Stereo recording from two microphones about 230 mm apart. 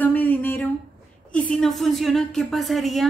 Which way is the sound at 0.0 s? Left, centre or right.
Centre.